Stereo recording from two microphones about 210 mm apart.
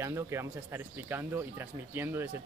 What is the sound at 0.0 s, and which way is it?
Speech, 15° right (ahead or behind).